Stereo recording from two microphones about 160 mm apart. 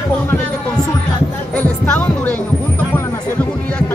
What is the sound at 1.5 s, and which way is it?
Music, 10° left (ahead or behind).